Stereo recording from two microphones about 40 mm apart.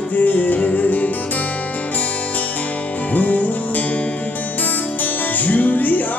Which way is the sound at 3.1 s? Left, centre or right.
Left.